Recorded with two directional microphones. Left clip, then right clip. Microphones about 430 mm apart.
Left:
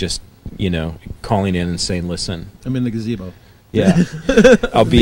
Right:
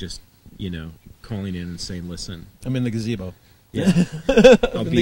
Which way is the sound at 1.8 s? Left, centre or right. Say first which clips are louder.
Left 11 dB; left.